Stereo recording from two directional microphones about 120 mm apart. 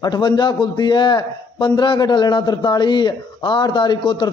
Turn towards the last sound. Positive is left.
turn(degrees=40)  # may be behind; listen again after turning